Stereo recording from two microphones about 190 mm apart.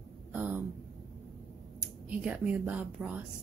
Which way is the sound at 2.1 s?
5° right (ahead or behind).